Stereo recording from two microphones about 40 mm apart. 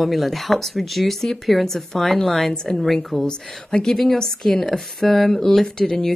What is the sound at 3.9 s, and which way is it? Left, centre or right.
Speech, centre.